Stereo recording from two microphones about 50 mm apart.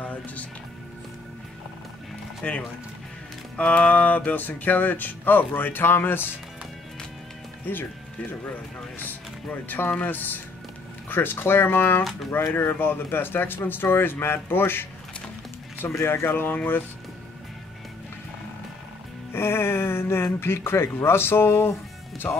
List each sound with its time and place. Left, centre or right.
0.0 s music: left
2.4 s speech: left
3.5 s music: left
7.7 s speech: left
9.5 s music: left
11.1 s speech: left
16.0 s speech: left
19.3 s speech: left
22.2 s speech: centre